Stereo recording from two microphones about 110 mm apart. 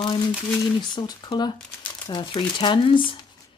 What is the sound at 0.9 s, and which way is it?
Speech, 40° left (ahead or behind).